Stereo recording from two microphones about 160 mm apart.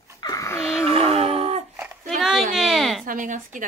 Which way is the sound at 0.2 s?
20° left (ahead or behind).